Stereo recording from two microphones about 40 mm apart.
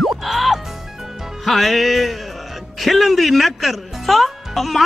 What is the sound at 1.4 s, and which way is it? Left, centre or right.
Speech, centre.